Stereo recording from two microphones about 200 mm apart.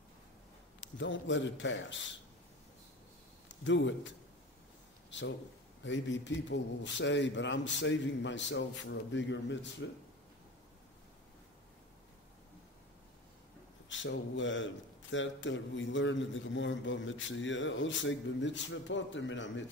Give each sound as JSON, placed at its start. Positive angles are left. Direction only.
{"t": 0.7, "sound": "a man's voice", "side_deg": 65}
{"t": 3.4, "sound": "speech", "side_deg": 65}
{"t": 5.1, "sound": "a man's voice", "side_deg": 65}
{"t": 13.8, "sound": "a man's voice", "side_deg": 65}